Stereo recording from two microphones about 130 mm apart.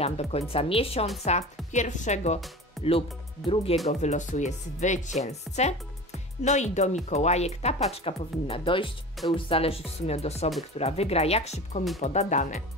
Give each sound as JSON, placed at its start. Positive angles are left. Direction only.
{"t": 0.0, "sound": "speech", "side_deg": 50}
{"t": 1.3, "sound": "speech", "side_deg": 60}
{"t": 1.7, "sound": "speech", "side_deg": 70}
{"t": 2.8, "sound": "music", "side_deg": 0}
{"t": 3.7, "sound": "speech", "side_deg": 50}
{"t": 4.0, "sound": "speech", "side_deg": 60}